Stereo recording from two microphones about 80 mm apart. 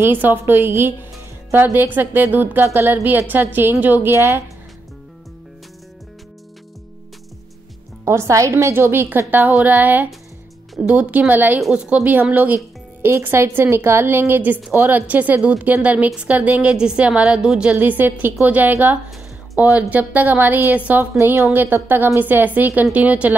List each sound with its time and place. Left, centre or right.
0.0 s a woman's voice: right
4.1 s a woman's voice: right
8.0 s a woman's voice: right
9.5 s a woman's voice: centre
12.5 s music: right
13.2 s a woman's voice: right; by 17.7 s centre
17.7 s a woman's voice: right